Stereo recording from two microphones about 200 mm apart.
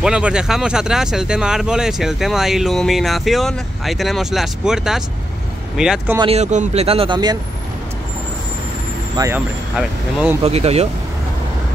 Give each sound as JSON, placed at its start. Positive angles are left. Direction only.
{"t": 0.0, "sound": "speech", "side_deg": -5}
{"t": 6.1, "sound": "speech", "side_deg": -30}
{"t": 9.1, "sound": "speech", "side_deg": -15}
{"t": 10.4, "sound": "speech", "side_deg": -30}